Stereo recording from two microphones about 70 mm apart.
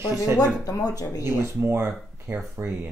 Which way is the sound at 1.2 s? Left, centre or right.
Right.